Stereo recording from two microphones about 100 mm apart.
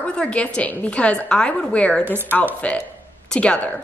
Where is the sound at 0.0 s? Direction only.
10° left (ahead or behind).